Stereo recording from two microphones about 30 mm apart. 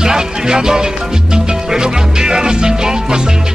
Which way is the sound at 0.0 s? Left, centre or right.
Right.